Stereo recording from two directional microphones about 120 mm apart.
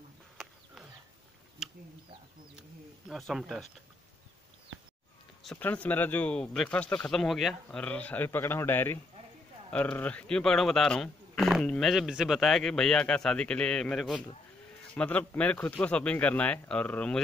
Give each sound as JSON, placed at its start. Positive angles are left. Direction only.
{"t": 3.1, "sound": "a man's voice", "side_deg": 0}
{"t": 5.6, "sound": "speech", "side_deg": 15}
{"t": 7.8, "sound": "a man's voice", "side_deg": 10}
{"t": 11.6, "sound": "speech", "side_deg": 10}
{"t": 11.9, "sound": "a man's voice", "side_deg": -5}